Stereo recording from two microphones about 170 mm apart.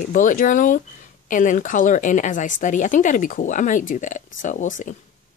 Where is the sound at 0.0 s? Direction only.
50° left (ahead or behind).